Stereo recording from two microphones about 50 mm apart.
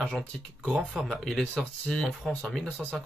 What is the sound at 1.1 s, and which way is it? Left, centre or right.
Speech, centre.